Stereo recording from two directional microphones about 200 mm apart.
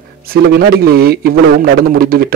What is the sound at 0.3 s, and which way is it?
A man's voice, 50° right (ahead or behind).